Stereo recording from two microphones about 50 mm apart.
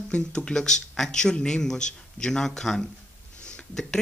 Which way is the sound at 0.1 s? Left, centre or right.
Centre.